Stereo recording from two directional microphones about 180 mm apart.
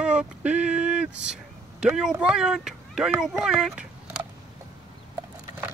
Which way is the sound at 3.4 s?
5° right (ahead or behind).